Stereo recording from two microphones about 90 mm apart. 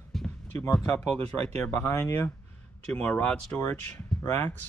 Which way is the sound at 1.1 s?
20° left (ahead or behind).